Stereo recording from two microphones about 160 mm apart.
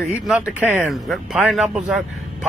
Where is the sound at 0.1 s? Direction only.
5° right (ahead or behind).